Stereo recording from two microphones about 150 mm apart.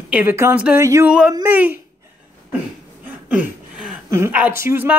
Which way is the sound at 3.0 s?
5° right (ahead or behind).